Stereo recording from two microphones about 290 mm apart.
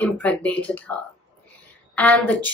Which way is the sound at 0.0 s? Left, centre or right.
Centre.